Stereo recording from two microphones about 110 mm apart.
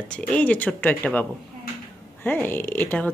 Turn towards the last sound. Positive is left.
turn(degrees=10)  # may be behind; listen again after turning